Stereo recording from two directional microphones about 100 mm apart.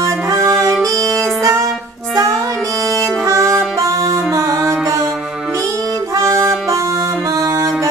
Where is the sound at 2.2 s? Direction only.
35° right (ahead or behind).